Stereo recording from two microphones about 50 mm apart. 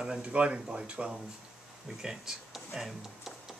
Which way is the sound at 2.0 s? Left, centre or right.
Centre.